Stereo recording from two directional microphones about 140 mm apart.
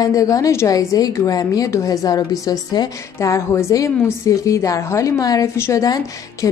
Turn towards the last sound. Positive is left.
turn(degrees=25)  # may be behind; listen again after turning